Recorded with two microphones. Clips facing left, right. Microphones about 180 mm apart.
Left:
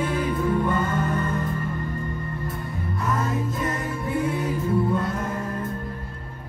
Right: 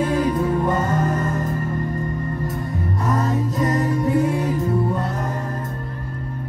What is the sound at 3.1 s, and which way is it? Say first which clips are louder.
Music: right 4 dB; 40° right (ahead or behind).